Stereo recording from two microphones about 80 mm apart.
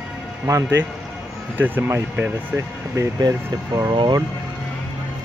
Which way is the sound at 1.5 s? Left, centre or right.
Right.